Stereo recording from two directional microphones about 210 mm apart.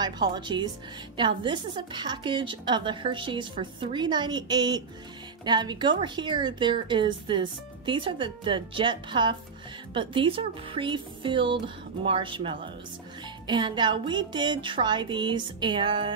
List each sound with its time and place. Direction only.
0.0 s a woman's voice: 20° right (ahead or behind)